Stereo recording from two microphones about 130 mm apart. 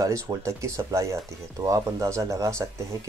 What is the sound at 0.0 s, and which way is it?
Speech, 25° right (ahead or behind).